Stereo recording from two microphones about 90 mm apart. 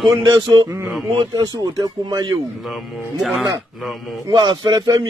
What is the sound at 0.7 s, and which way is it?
Speech, 30° right (ahead or behind).